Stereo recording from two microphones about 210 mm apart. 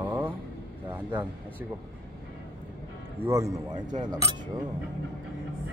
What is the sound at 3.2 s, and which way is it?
Speech, 15° right (ahead or behind).